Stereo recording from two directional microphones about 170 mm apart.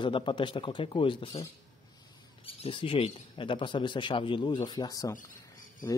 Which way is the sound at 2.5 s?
30° left (ahead or behind).